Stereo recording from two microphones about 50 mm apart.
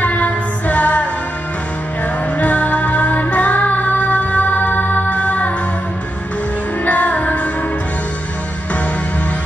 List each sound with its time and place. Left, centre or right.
0.0 s music: left
2.3 s music: left
6.8 s music: left